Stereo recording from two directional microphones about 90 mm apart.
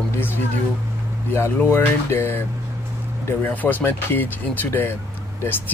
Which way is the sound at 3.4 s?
20° left (ahead or behind).